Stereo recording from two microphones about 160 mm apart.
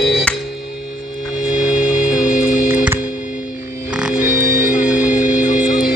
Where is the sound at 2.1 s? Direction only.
60° left (ahead or behind).